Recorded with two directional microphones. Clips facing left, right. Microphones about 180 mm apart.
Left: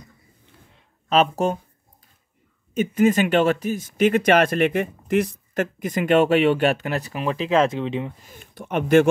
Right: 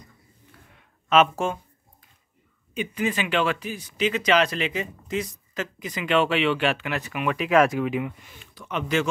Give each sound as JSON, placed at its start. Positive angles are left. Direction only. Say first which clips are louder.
{"t": 0.7, "sound": "a sound", "louder": "even", "side_deg": 35}
{"t": 2.7, "sound": "speech", "louder": "left 9 dB", "side_deg": 45}
{"t": 8.3, "sound": "speech", "louder": "left 5 dB", "side_deg": 50}